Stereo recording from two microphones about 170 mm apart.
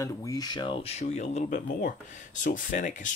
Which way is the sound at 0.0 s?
20° left (ahead or behind).